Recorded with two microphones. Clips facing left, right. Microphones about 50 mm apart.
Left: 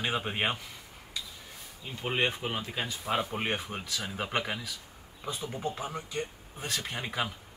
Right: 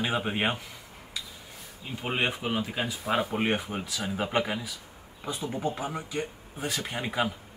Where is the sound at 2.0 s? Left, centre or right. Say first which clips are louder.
Right 1 dB; centre.